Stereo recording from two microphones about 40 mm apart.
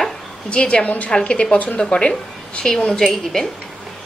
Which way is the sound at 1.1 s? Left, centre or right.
Left.